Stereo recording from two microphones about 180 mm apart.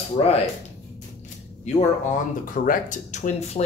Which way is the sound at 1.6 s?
45° left (ahead or behind).